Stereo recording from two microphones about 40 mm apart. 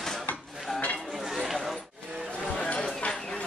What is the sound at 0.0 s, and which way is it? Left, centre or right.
Dishes, centre.